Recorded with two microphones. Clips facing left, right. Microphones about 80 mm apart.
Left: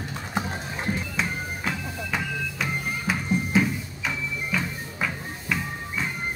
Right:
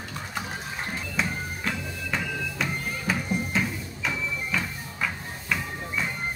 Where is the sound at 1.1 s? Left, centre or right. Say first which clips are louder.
Left 1 dB; centre.